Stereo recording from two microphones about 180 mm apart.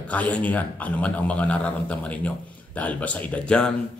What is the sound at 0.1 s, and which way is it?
Speech, 10° left (ahead or behind).